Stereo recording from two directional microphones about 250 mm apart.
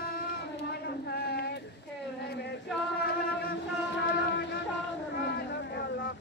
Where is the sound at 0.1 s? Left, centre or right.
Left.